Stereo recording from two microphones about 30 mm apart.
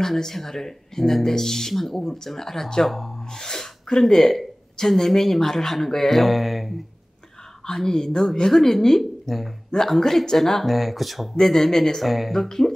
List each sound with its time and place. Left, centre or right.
0.0 s a woman's voice: centre
3.3 s sneeze: centre
4.0 s a woman's voice: centre
7.6 s a woman's voice: centre
11.3 s a woman's voice: centre
12.0 s speech: centre
12.4 s a woman's voice: centre